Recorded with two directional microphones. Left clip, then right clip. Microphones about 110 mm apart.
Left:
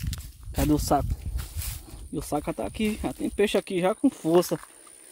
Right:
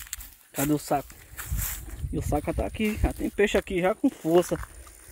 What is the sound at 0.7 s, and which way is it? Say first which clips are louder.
Speech: left 3 dB; 45° left (ahead or behind).